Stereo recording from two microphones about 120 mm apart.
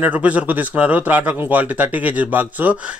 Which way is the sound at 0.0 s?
10° right (ahead or behind).